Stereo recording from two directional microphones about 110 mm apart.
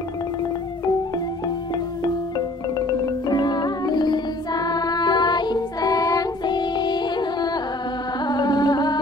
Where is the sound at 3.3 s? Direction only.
40° left (ahead or behind).